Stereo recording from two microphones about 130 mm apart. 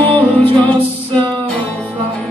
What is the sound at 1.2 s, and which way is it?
Music, 35° right (ahead or behind).